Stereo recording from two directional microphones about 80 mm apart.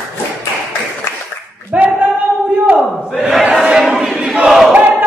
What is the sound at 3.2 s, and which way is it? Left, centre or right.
Battle cry, centre.